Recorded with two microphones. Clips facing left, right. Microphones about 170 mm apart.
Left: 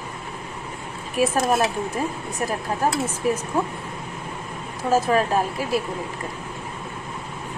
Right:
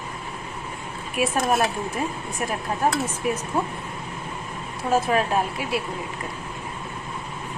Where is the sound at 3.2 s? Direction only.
35° left (ahead or behind).